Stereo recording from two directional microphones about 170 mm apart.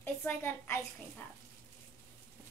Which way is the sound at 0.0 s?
10° left (ahead or behind).